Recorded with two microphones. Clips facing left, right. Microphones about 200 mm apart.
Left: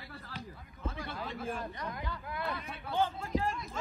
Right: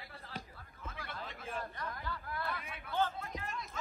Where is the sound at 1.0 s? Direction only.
30° left (ahead or behind).